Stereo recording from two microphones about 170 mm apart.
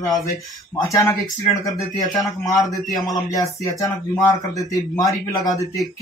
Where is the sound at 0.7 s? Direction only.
20° left (ahead or behind).